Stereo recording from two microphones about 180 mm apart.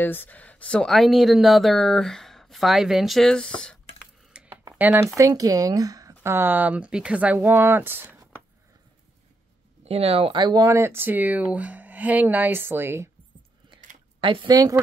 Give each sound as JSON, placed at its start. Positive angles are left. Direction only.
{"t": 0.0, "sound": "speech", "side_deg": 10}
{"t": 4.3, "sound": "a sound", "side_deg": -5}
{"t": 5.1, "sound": "speech", "side_deg": -20}
{"t": 9.8, "sound": "speech", "side_deg": -35}
{"t": 14.2, "sound": "speech", "side_deg": -25}